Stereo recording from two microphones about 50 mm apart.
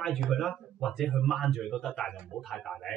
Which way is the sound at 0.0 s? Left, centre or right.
Centre.